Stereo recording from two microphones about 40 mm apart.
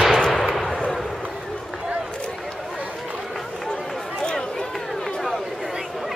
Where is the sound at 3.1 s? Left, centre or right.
Centre.